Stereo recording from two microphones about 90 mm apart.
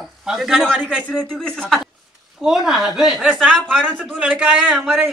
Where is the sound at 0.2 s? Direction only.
5° right (ahead or behind).